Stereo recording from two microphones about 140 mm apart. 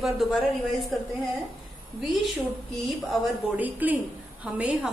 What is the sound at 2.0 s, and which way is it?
A woman's voice, centre (ahead or behind).